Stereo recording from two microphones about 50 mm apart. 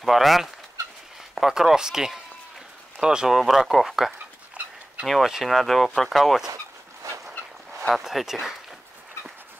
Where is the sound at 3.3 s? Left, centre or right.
Centre.